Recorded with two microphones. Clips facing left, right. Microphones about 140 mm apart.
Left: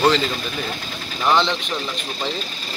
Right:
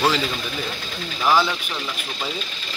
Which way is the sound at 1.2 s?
5° right (ahead or behind).